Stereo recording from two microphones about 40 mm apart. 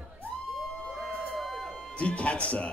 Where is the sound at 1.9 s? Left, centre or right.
Left.